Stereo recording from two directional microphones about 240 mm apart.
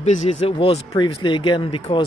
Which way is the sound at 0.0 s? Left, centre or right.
Left.